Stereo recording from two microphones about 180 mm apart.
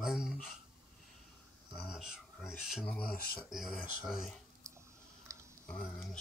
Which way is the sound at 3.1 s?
55° left (ahead or behind).